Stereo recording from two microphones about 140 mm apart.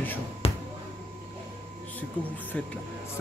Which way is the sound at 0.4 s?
45° left (ahead or behind).